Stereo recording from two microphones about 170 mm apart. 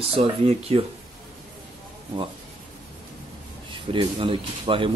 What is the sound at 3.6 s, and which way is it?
Speech, 30° right (ahead or behind).